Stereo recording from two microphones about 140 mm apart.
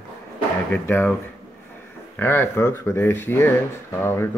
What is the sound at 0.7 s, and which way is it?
Speech, 15° left (ahead or behind).